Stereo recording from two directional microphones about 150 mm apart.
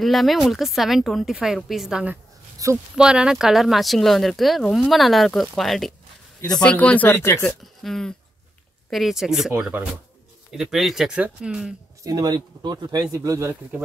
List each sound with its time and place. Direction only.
0.0 s speech: centre (ahead or behind)
2.6 s speech: 20° right (ahead or behind)
3.0 s speech: 5° right (ahead or behind); by 7.5 s 15° left (ahead or behind)
7.6 s speech: centre (ahead or behind)
12.0 s speech: 25° right (ahead or behind)